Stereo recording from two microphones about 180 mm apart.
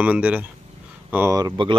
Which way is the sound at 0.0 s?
5° right (ahead or behind).